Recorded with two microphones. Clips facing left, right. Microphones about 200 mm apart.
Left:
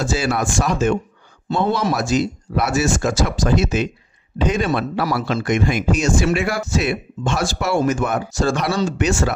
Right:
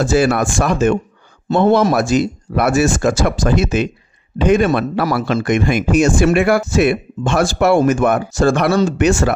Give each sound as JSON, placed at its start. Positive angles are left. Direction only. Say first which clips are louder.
{"t": 0.0, "sound": "speech", "louder": "right 6 dB", "side_deg": -55}